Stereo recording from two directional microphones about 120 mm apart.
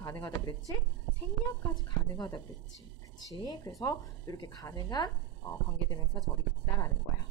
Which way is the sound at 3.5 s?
30° left (ahead or behind).